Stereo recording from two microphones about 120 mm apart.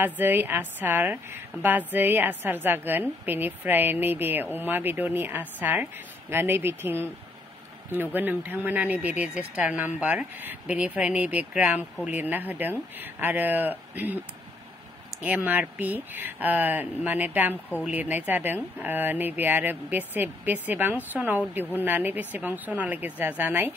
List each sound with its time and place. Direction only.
0.0 s a woman's voice: 15° right (ahead or behind)
15.2 s a woman's voice: 15° right (ahead or behind)